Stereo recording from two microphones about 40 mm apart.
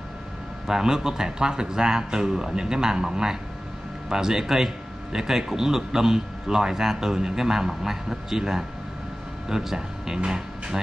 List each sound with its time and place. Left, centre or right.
0.7 s speech: centre